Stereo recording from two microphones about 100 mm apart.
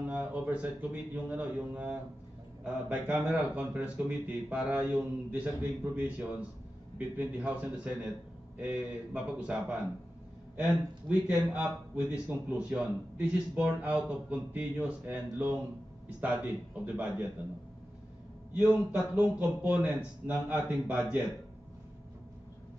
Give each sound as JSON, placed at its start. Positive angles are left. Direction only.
{"t": 0.0, "sound": "a man's voice", "side_deg": -15}
{"t": 18.6, "sound": "a man's voice", "side_deg": -10}